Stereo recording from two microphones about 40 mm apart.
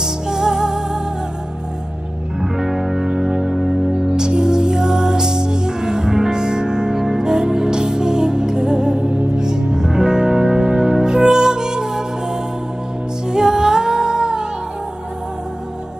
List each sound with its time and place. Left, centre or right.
0.0 s music: centre
2.4 s music: centre
4.2 s music: centre